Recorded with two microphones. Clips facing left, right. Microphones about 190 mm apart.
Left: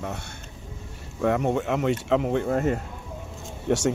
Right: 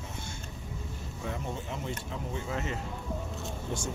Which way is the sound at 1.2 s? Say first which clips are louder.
Left 14 dB; 70° left (ahead or behind).